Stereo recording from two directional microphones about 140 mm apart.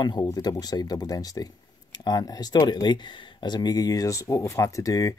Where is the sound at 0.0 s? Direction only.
30° left (ahead or behind).